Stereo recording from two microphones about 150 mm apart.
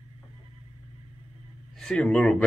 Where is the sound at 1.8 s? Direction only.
5° left (ahead or behind).